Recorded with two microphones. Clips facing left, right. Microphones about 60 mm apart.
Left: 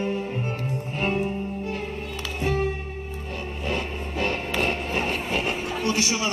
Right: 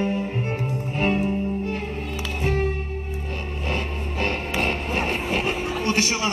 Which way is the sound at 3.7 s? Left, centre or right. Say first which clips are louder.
Right 1 dB; right.